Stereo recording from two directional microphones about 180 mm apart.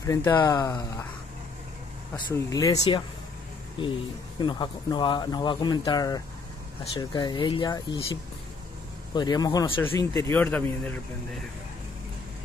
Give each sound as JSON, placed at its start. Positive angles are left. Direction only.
{"t": 0.0, "sound": "speech", "side_deg": 15}
{"t": 2.1, "sound": "speech", "side_deg": 25}
{"t": 4.4, "sound": "speech", "side_deg": 25}